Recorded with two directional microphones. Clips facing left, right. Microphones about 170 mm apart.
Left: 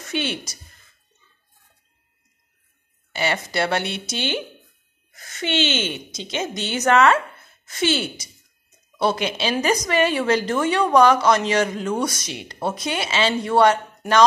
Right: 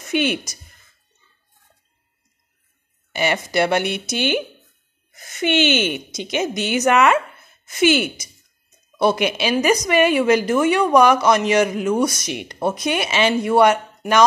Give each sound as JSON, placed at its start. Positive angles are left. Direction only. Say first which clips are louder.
{"t": 0.0, "sound": "speech", "louder": "right 6 dB", "side_deg": -15}
{"t": 3.1, "sound": "a woman's voice", "louder": "right 3 dB", "side_deg": -15}